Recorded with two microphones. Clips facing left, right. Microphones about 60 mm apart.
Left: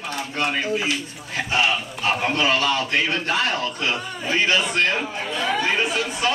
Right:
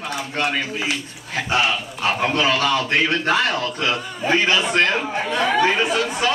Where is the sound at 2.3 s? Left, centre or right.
Right.